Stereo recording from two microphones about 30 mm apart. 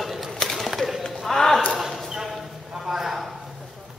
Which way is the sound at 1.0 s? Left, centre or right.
Centre.